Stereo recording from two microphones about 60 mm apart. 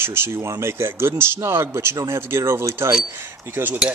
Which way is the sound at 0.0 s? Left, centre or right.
Right.